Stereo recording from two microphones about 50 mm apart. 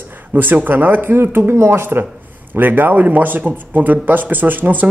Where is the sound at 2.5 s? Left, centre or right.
Right.